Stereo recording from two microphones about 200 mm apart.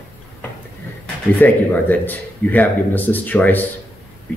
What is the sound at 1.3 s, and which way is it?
Speech, 10° left (ahead or behind).